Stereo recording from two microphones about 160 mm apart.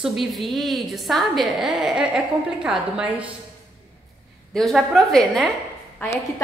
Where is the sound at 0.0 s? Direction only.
Centre (ahead or behind).